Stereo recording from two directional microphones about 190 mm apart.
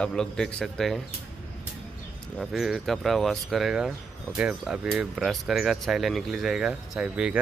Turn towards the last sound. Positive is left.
turn(degrees=-5)  # may be behind; listen again after turning